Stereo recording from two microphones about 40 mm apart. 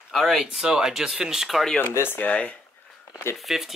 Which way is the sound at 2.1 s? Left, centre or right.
Left.